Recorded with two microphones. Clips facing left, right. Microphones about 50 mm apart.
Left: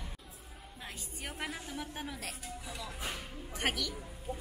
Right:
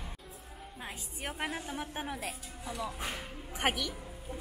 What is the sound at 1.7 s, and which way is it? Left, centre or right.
Speech, right.